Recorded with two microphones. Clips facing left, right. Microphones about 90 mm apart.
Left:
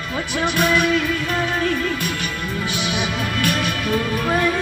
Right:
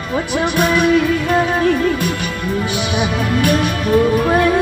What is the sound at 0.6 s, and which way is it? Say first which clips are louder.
Music: right 5 dB; 30° right (ahead or behind).